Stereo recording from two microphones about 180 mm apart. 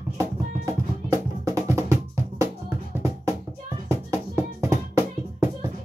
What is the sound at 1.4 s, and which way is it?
Music, 15° right (ahead or behind).